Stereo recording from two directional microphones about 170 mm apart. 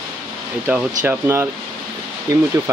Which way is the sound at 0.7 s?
10° right (ahead or behind).